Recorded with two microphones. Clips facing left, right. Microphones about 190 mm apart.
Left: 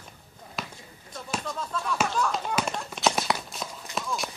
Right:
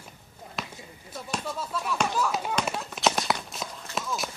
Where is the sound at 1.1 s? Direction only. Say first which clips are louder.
Even; 5° right (ahead or behind).